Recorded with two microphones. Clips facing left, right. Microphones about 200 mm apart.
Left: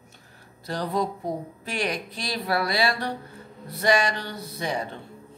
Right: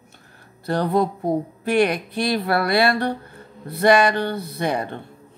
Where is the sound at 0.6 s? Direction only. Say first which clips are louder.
Right 7 dB; 60° right (ahead or behind).